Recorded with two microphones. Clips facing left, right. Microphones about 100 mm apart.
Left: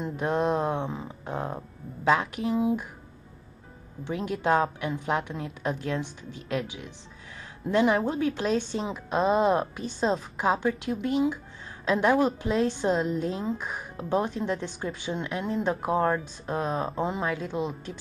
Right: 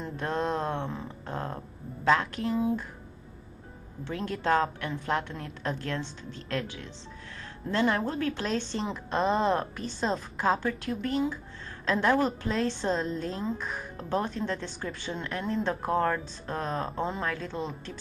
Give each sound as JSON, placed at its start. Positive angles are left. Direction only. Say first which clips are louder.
{"t": 0.0, "sound": "a woman's voice", "louder": "left 4 dB", "side_deg": 15}
{"t": 4.0, "sound": "a woman's voice", "louder": "left 3 dB", "side_deg": 15}
{"t": 10.0, "sound": "a woman's voice", "louder": "left 4 dB", "side_deg": 0}
{"t": 10.4, "sound": "a woman's voice", "louder": "left 1 dB", "side_deg": 15}